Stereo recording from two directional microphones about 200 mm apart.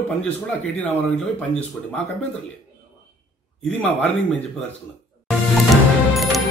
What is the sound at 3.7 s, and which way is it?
Speech, 5° left (ahead or behind).